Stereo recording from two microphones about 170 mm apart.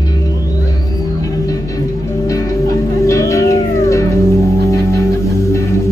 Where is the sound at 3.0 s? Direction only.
20° left (ahead or behind).